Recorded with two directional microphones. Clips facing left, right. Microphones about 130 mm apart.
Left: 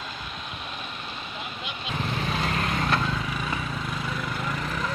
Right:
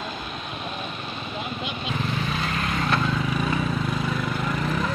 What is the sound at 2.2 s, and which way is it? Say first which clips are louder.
Vehicle: even; 35° left (ahead or behind).